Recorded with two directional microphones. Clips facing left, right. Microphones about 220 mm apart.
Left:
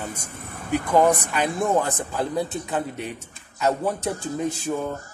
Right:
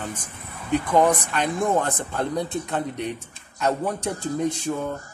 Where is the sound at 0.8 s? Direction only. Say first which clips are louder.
Left 2 dB; 10° left (ahead or behind).